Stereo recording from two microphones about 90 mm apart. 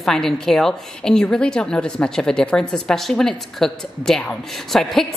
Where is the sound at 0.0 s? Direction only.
5° left (ahead or behind).